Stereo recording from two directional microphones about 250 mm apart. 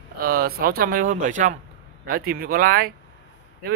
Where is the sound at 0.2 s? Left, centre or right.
Right.